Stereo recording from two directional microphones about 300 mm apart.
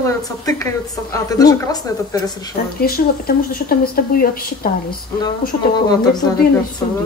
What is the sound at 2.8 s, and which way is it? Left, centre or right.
Speech, left.